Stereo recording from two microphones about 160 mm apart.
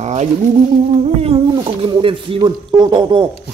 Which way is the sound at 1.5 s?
30° right (ahead or behind).